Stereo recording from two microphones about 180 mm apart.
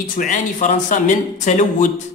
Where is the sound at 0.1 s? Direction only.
50° left (ahead or behind).